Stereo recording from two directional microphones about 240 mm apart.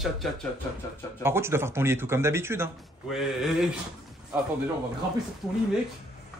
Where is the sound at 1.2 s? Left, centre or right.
Centre.